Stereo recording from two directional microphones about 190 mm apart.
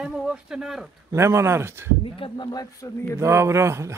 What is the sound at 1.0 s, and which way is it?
Speech, 15° right (ahead or behind).